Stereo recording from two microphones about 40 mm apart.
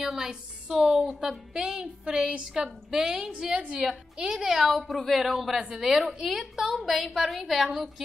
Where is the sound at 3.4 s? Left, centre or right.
Right.